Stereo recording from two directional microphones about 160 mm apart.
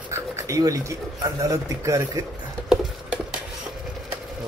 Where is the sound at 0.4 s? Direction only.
20° right (ahead or behind).